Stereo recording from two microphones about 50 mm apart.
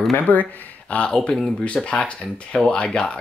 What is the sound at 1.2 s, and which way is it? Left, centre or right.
Speech, centre.